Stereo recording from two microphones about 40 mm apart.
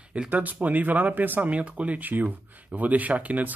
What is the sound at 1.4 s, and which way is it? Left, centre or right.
Speech, right.